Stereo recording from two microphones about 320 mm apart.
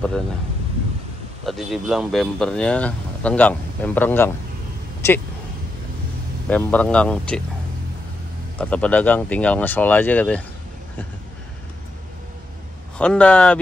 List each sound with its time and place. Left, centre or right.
1.4 s speech: centre
6.5 s speech: centre
8.5 s speech: centre
12.9 s speech: centre